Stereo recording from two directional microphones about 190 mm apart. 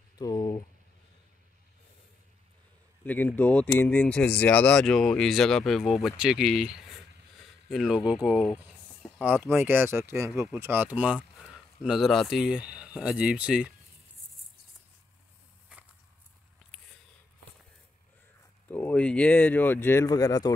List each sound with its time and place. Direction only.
0.2 s a sound: 20° left (ahead or behind)
3.1 s speech: 10° left (ahead or behind)
15.7 s walk: 5° right (ahead or behind)
18.7 s speech: 10° left (ahead or behind)